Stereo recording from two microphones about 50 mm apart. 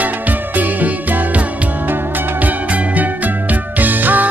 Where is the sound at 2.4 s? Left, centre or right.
Right.